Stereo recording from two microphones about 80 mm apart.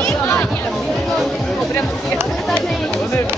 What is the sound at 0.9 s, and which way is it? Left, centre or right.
Music, centre.